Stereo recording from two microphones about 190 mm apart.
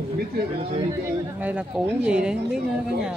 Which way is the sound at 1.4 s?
5° right (ahead or behind).